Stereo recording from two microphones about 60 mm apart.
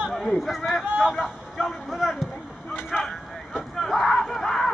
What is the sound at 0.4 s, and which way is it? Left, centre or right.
Speech, centre.